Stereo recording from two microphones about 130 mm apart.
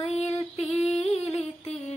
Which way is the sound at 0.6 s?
55° left (ahead or behind).